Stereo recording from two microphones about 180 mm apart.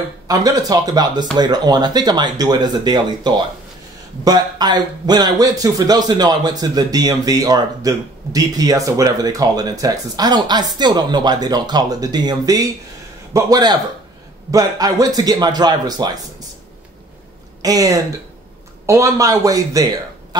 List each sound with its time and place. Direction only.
0.3 s a man's voice: 20° right (ahead or behind)
17.6 s a man's voice: 20° right (ahead or behind)